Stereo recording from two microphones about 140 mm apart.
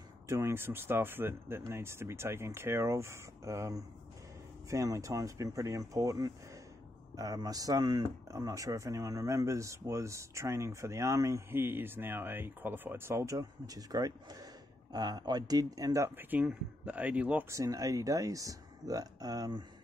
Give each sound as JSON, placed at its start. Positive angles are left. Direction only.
{"t": 0.3, "sound": "speech", "side_deg": -20}
{"t": 17.5, "sound": "speech", "side_deg": -25}